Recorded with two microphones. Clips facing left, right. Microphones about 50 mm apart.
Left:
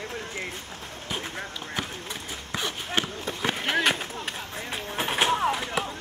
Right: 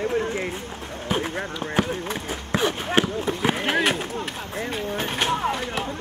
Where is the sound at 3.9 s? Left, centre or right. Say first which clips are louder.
Right 4 dB; centre.